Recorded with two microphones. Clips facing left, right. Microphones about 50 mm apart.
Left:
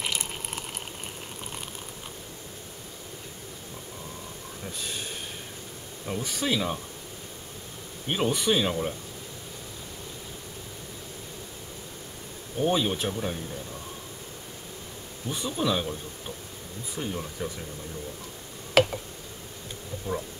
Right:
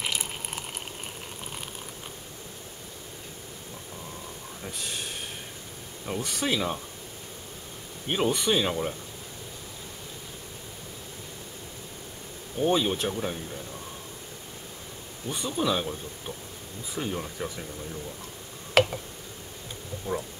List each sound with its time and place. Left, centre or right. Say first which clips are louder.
0.0 s a sound: even; centre
6.0 s speech: even; centre
8.1 s speech: even; centre
12.6 s speech: right 1 dB; centre
15.2 s speech: even; centre
17.0 s speech: right 1 dB; centre
18.8 s a sound: left 1 dB; centre
20.1 s speech: right 1 dB; left